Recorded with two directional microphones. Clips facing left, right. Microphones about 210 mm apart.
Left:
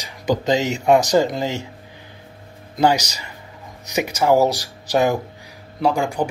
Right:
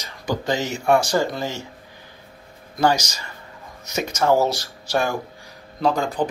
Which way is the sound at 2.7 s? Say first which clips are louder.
Left 2 dB; 15° left (ahead or behind).